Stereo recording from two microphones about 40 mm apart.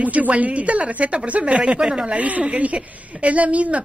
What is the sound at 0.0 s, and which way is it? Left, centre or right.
A woman's voice, right.